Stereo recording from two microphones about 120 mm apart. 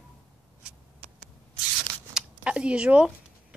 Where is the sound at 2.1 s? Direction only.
10° right (ahead or behind).